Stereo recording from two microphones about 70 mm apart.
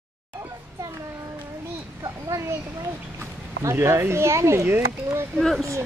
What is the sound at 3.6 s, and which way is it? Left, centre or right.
Speech, right.